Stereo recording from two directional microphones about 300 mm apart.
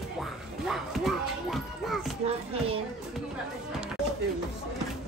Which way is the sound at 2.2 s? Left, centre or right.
Centre.